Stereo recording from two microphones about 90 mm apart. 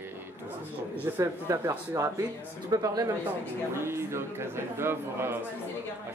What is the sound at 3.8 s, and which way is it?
A man's voice, 30° right (ahead or behind).